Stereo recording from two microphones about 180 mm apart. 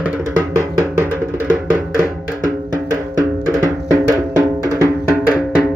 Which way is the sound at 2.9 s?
20° right (ahead or behind).